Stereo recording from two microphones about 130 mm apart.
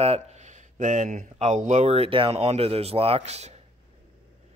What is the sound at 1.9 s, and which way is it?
A man's voice, 45° right (ahead or behind).